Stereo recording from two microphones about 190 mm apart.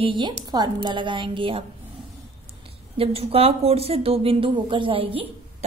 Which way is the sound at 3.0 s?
30° right (ahead or behind).